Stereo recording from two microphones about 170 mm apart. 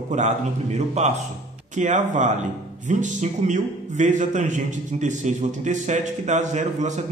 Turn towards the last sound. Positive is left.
turn(degrees=-45)  # may be behind; listen again after turning